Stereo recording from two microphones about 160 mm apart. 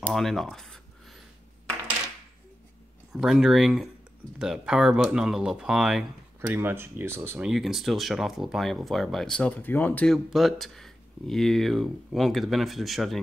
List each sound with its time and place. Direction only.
0.1 s speech: centre (ahead or behind)
3.1 s speech: 5° right (ahead or behind)
6.4 s speech: 15° right (ahead or behind)